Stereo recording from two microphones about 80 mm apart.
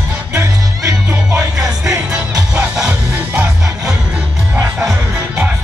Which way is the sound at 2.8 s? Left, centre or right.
Centre.